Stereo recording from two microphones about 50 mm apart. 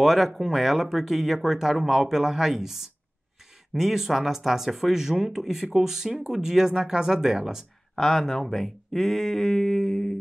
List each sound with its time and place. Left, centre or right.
0.0 s speech: centre
7.9 s speech: centre